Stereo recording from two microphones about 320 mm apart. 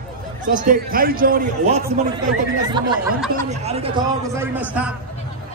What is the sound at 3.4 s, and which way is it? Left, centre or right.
A man's voice, centre.